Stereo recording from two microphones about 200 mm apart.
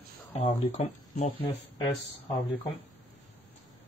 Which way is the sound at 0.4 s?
30° left (ahead or behind).